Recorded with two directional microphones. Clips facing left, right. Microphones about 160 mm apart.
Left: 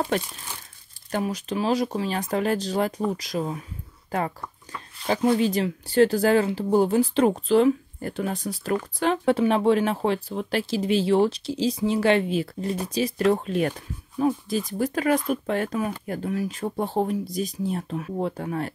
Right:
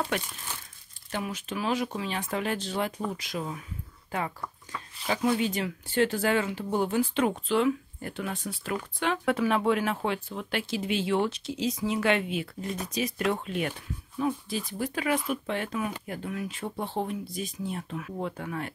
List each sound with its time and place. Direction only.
0.1 s speech: 35° left (ahead or behind)